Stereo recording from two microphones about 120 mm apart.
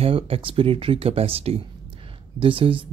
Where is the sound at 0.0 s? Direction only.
50° right (ahead or behind).